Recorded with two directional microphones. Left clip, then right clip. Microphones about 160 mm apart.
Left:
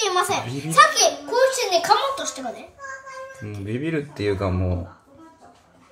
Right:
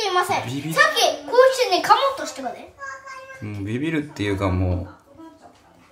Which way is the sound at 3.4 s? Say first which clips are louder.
Right 3 dB; 5° right (ahead or behind).